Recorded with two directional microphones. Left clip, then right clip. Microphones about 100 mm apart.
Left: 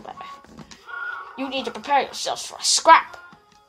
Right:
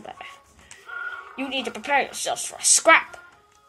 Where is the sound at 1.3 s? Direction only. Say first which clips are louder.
Right 2 dB; 35° right (ahead or behind).